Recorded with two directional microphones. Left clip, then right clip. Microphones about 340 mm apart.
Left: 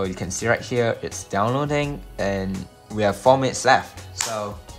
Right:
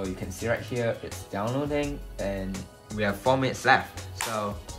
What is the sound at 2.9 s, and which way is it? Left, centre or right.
Speech, centre.